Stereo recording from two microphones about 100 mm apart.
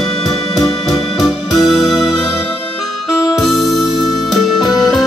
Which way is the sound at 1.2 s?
5° right (ahead or behind).